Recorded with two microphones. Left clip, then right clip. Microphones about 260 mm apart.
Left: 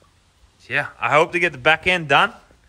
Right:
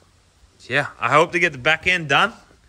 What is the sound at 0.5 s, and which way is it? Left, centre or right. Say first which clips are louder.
Speech: right 1 dB; centre.